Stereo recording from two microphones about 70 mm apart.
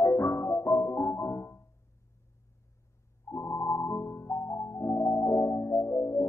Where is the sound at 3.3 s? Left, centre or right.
Left.